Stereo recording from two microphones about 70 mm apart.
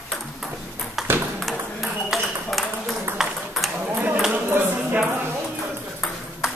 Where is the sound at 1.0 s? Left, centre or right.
Centre.